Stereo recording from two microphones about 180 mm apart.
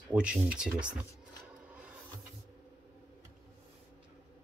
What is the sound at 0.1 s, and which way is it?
Speech, 5° right (ahead or behind).